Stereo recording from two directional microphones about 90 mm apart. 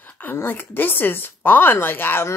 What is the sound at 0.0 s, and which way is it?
A woman's voice, 20° left (ahead or behind).